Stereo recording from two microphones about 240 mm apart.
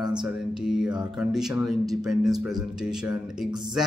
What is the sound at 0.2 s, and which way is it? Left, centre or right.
Speech, centre.